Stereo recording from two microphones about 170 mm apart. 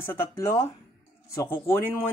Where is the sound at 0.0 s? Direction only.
15° left (ahead or behind).